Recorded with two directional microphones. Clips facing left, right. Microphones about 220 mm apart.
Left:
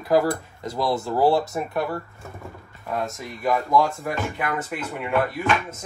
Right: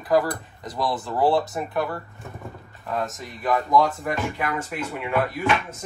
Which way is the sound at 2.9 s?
Centre (ahead or behind).